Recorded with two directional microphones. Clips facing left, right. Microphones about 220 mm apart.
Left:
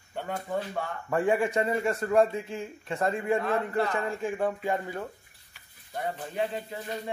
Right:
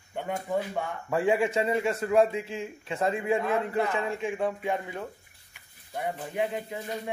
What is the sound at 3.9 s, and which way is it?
A man's voice, centre (ahead or behind).